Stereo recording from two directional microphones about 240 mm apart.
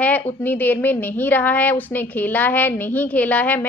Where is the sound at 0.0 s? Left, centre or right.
Centre.